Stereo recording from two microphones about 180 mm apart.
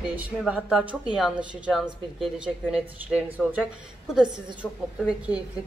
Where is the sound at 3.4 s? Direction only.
Centre (ahead or behind).